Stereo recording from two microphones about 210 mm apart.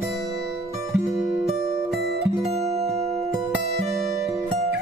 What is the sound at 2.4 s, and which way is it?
Music, 30° right (ahead or behind).